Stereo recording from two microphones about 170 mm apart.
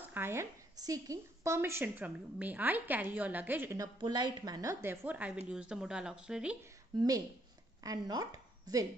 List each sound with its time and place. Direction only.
0.1 s a woman's voice: 15° right (ahead or behind)
7.0 s speech: 20° right (ahead or behind)